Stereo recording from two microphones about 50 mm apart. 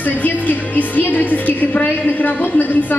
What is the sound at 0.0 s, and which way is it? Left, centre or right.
A woman's voice, left.